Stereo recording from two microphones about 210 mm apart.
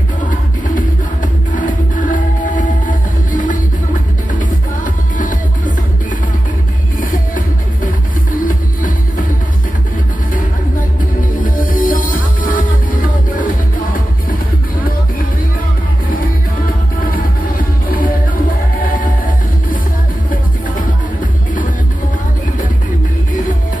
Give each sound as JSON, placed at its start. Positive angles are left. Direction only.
{"t": 1.5, "sound": "music", "side_deg": 40}
{"t": 4.4, "sound": "music", "side_deg": 40}
{"t": 7.0, "sound": "music", "side_deg": 40}
{"t": 11.4, "sound": "music", "side_deg": 40}
{"t": 14.8, "sound": "music", "side_deg": 40}
{"t": 17.0, "sound": "music", "side_deg": 40}